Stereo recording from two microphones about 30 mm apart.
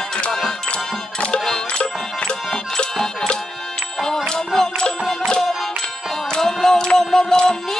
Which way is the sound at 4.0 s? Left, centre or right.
Left.